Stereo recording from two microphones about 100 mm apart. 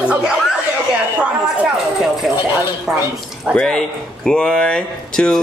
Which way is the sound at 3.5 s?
5° left (ahead or behind).